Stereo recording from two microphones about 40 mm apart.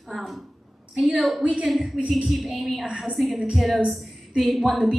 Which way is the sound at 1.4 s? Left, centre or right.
Right.